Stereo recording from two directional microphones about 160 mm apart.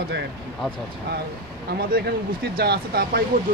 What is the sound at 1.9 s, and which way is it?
Speech, 80° right.